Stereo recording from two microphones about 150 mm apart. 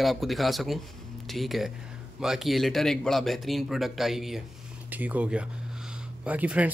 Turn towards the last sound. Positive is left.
turn(degrees=-10)  # may be behind; listen again after turning